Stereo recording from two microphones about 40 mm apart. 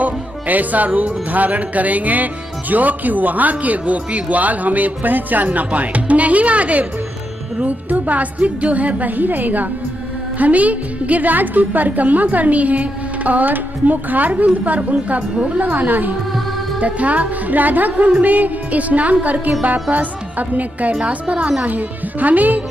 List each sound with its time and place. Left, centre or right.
0.0 s a woman's voice: right
21.6 s speech: right